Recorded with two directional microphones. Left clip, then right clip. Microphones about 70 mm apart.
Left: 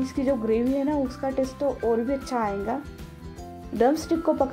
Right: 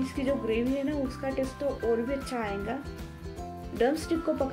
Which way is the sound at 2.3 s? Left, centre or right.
Left.